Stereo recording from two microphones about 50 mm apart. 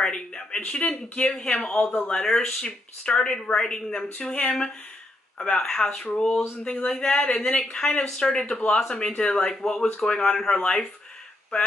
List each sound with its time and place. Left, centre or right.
0.0 s speech: centre
1.0 s speech: left
1.3 s speech: centre
5.4 s speech: centre
6.7 s speech: left
7.6 s speech: centre